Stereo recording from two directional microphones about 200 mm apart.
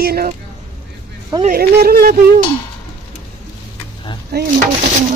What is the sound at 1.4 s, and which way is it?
Speech, 50° right (ahead or behind).